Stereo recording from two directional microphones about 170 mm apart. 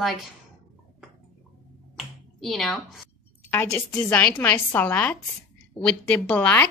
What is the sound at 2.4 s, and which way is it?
Speech, centre (ahead or behind).